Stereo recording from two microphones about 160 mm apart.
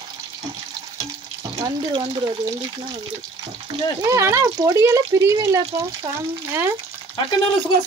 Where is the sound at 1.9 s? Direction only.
25° right (ahead or behind).